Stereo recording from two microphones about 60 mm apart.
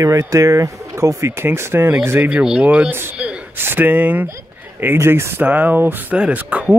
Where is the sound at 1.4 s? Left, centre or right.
Right.